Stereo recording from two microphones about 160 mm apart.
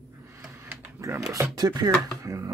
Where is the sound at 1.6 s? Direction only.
25° right (ahead or behind).